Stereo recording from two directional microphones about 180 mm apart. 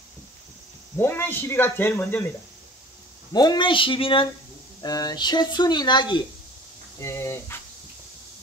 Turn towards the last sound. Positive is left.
turn(degrees=15)  # may be behind; listen again after turning